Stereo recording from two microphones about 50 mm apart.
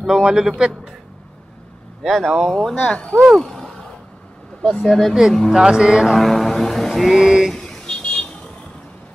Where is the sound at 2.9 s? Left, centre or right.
Centre.